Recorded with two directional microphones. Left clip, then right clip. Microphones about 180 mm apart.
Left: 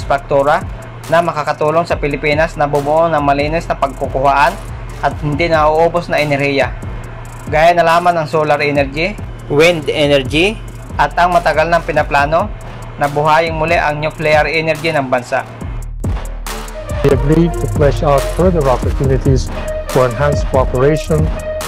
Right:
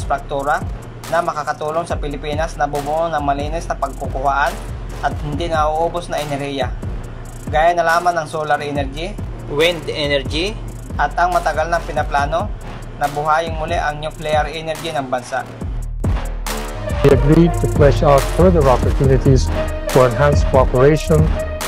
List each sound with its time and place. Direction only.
0.1 s speech: 15° left (ahead or behind)
11.5 s speech: 10° left (ahead or behind)
16.0 s music: centre (ahead or behind)
16.9 s speech: centre (ahead or behind)